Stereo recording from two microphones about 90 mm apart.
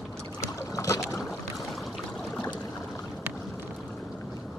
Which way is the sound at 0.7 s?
35° left (ahead or behind).